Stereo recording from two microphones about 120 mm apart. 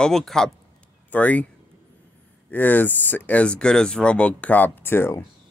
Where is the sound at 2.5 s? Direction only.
15° left (ahead or behind).